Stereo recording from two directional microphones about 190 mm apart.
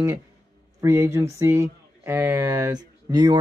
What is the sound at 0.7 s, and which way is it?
Speech, 15° right (ahead or behind).